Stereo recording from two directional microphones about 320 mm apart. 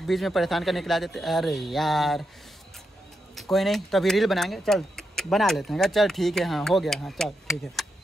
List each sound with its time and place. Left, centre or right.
0.0 s speech: centre
3.3 s speech: centre